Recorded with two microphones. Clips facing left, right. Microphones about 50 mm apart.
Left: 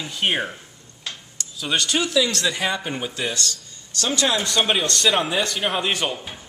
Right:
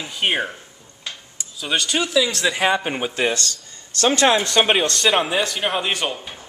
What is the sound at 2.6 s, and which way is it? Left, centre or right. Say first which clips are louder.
Speech: right 5 dB; right.